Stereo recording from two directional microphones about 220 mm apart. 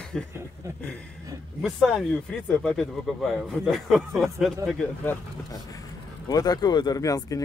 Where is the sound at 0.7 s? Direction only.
5° left (ahead or behind).